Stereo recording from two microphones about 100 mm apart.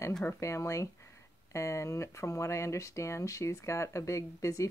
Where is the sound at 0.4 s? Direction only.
30° left (ahead or behind).